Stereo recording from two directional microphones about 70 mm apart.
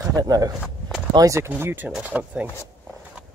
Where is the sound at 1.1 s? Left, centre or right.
Right.